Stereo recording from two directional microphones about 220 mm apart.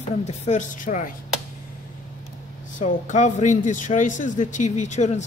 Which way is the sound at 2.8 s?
35° left (ahead or behind).